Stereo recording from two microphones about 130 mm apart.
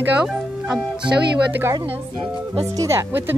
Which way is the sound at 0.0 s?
5° right (ahead or behind).